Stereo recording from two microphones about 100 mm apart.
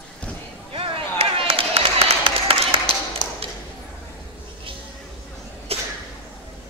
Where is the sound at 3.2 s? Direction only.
50° left (ahead or behind).